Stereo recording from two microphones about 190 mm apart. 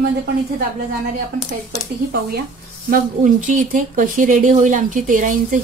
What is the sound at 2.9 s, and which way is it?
Speech, 40° right (ahead or behind).